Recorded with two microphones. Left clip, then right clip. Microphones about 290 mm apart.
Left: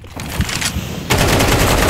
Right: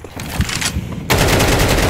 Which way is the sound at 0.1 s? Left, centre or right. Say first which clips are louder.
Left 1 dB; centre.